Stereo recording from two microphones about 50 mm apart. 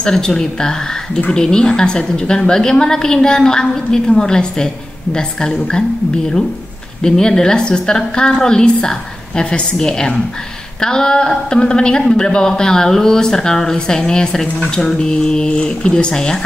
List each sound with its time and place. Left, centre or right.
0.0 s a woman's voice: centre
7.0 s a woman's voice: centre